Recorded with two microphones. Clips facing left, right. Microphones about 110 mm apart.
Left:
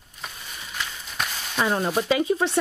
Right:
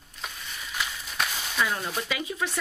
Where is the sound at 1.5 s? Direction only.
35° left (ahead or behind).